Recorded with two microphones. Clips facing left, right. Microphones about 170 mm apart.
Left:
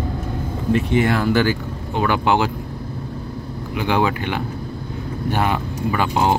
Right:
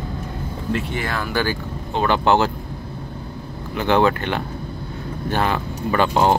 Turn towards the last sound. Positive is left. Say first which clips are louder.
# right 2 dB
turn(degrees=10)  # may be behind; listen again after turning